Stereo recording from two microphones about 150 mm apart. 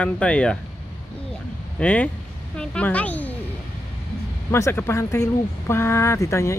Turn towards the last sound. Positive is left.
turn(degrees=20)  # may be behind; listen again after turning